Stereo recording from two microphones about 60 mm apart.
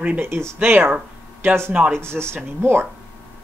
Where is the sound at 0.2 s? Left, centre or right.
Right.